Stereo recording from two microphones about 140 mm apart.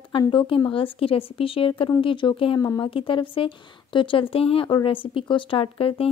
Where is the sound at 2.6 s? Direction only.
25° left (ahead or behind).